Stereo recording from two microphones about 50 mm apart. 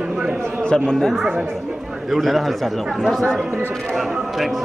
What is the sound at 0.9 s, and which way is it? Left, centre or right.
A man's voice, centre.